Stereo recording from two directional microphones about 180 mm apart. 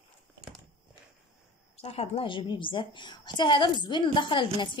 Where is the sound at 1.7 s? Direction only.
35° left (ahead or behind).